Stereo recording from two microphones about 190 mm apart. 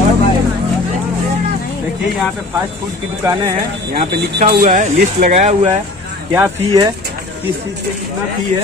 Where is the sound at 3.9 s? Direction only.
40° right (ahead or behind).